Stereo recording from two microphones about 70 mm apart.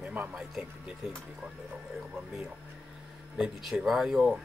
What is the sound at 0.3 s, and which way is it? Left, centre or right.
Speech, centre.